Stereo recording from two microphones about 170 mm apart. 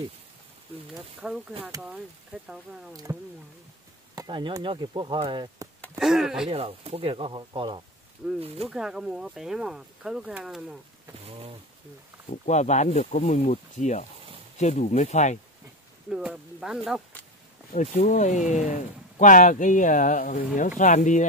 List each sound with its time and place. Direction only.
1.2 s speech: 5° right (ahead or behind)
4.1 s chop: 25° right (ahead or behind)
5.9 s speech: 5° right (ahead or behind)
6.5 s speech: 35° right (ahead or behind)
8.2 s speech: 5° right (ahead or behind)
11.2 s bee: 35° right (ahead or behind)
12.3 s speech: 45° left (ahead or behind)
16.1 s speech: 5° right (ahead or behind)
17.7 s speech: 45° left (ahead or behind)